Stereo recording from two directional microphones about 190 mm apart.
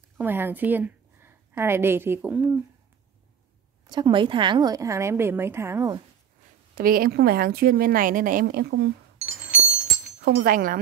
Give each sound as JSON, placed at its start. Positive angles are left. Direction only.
{"t": 0.2, "sound": "a woman's voice", "side_deg": -10}
{"t": 3.8, "sound": "a woman's voice", "side_deg": -25}
{"t": 6.7, "sound": "a woman's voice", "side_deg": -50}
{"t": 9.2, "sound": "a sound", "side_deg": -5}
{"t": 10.2, "sound": "a woman's voice", "side_deg": -50}